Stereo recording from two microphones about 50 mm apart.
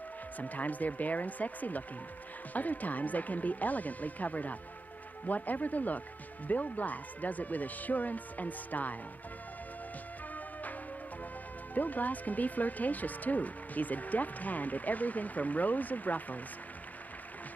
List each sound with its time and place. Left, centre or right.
0.4 s speech: left
11.7 s speech: left